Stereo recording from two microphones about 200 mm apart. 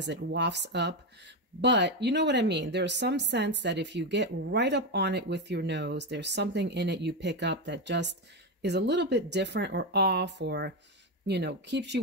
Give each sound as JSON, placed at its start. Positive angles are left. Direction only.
{"t": 0.0, "sound": "a woman's voice", "side_deg": -60}